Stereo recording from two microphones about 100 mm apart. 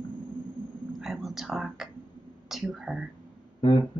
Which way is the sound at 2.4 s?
5° right (ahead or behind).